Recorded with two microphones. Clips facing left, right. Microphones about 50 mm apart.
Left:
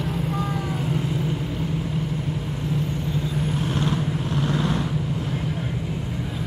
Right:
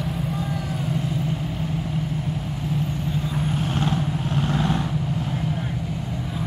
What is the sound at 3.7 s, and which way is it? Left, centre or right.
Vehicle, right.